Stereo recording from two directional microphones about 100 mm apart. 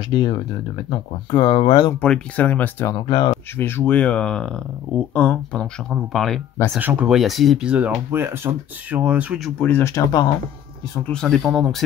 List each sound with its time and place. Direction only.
0.1 s speech: 60° left (ahead or behind)
2.0 s speech: 15° left (ahead or behind)
6.8 s speech: 20° right (ahead or behind)
7.1 s speech: centre (ahead or behind)
8.1 s speech: 25° right (ahead or behind)
9.6 s speech: 20° left (ahead or behind)
9.8 s speech: 35° left (ahead or behind)
11.1 s speech: 5° left (ahead or behind)